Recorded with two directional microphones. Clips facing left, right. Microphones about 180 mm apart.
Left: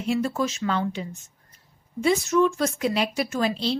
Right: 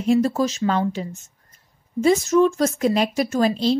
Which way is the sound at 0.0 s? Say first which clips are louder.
Right 6 dB; 40° right (ahead or behind).